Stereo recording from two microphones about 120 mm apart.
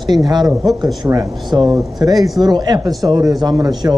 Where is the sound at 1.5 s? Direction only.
35° right (ahead or behind).